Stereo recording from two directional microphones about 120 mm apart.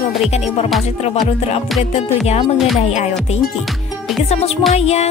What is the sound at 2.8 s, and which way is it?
Speech, 70° left (ahead or behind).